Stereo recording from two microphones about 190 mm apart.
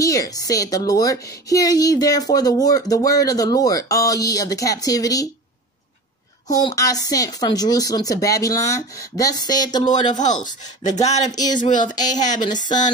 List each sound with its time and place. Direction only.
0.0 s a woman's voice: 20° left (ahead or behind)
6.5 s a woman's voice: 20° left (ahead or behind)
9.8 s speech: 40° left (ahead or behind)
12.0 s a woman's voice: 20° left (ahead or behind)